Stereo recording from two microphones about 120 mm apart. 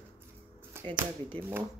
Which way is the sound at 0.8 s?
20° right (ahead or behind).